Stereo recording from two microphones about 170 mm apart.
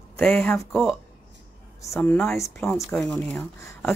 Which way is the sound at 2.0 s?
10° left (ahead or behind).